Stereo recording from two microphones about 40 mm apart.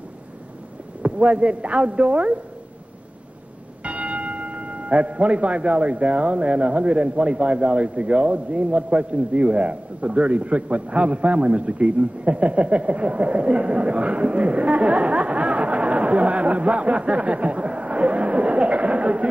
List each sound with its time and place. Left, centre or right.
1.0 s a man's voice: right
3.8 s speech: right